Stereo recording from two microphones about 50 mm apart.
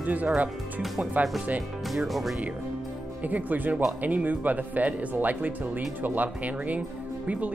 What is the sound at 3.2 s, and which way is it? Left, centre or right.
Speech, right.